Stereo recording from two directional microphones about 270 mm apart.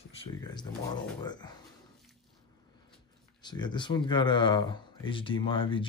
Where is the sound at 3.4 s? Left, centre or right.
Centre.